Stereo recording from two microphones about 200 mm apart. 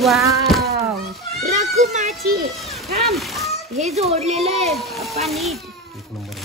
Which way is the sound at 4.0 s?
30° right (ahead or behind).